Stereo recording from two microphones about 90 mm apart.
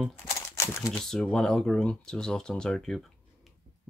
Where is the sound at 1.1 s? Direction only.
10° left (ahead or behind).